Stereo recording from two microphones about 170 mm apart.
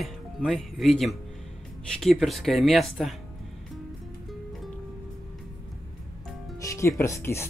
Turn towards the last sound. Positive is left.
turn(degrees=15)  # may be behind; listen again after turning